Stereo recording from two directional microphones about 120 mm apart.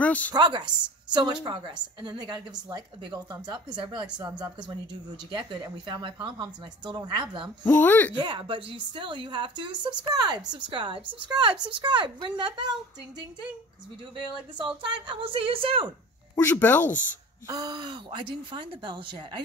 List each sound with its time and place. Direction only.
0.0 s a sound: 10° left (ahead or behind)
0.3 s a woman's voice: 40° right (ahead or behind)
7.6 s speech: 15° left (ahead or behind)
8.1 s a woman's voice: 40° right (ahead or behind)
15.0 s a woman's voice: 45° right (ahead or behind)
16.3 s speech: 20° left (ahead or behind)
17.5 s a woman's voice: 30° right (ahead or behind)